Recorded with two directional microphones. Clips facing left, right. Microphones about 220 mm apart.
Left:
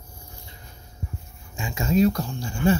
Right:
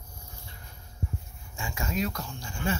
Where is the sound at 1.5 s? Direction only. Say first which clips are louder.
Left 10 dB; 20° left (ahead or behind).